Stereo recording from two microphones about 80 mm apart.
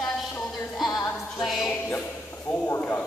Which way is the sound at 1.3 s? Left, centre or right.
Centre.